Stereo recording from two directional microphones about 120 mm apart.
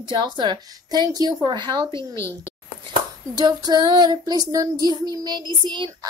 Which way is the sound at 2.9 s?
35° right (ahead or behind).